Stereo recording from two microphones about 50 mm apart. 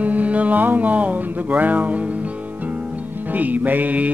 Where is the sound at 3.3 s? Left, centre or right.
Right.